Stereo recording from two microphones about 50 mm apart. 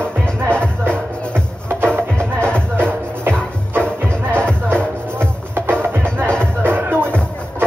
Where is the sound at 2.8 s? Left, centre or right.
Right.